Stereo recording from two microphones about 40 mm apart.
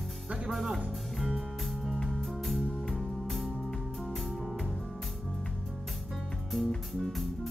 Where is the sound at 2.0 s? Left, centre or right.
Centre.